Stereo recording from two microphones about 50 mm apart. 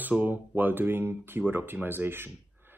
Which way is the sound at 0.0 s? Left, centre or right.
Right.